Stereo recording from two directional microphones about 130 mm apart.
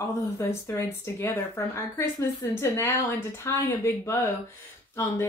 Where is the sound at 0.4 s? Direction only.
20° left (ahead or behind).